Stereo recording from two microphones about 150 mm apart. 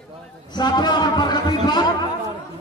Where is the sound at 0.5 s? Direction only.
30° left (ahead or behind).